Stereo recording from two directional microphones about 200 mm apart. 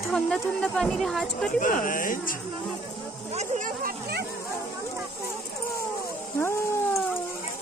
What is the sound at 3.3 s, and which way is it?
Music, 35° right (ahead or behind).